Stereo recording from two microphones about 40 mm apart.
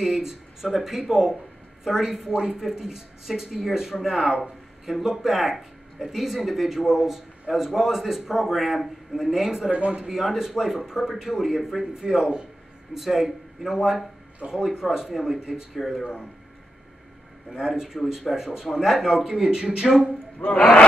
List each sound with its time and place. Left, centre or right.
0.0 s speech: centre
9.7 s speech: right
10.0 s speech: centre
15.8 s speech: centre
17.5 s speech: centre
20.3 s speech: left